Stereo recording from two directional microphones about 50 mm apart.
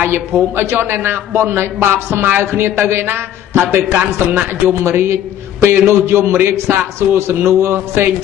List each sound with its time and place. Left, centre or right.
0.0 s a man's voice: right
4.8 s a man's voice: right